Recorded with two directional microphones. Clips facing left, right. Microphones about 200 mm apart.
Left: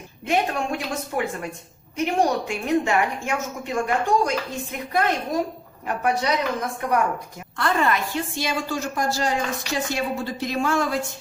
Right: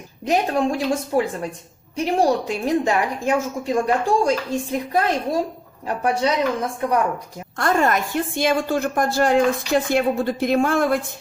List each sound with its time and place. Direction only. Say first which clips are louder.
0.2 s a woman's voice: right 4 dB; 35° right (ahead or behind)
7.5 s a woman's voice: right 3 dB; 45° right (ahead or behind)